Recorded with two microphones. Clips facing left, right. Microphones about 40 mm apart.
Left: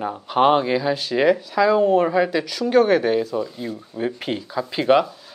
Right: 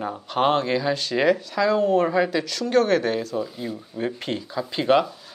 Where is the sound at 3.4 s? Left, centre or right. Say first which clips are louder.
Left 2 dB; centre.